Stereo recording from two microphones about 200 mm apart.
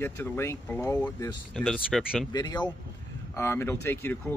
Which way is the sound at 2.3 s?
20° left (ahead or behind).